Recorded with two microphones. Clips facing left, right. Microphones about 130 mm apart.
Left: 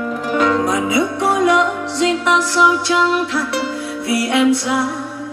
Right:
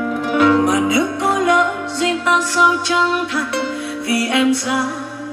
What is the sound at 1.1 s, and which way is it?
Music, 25° left (ahead or behind).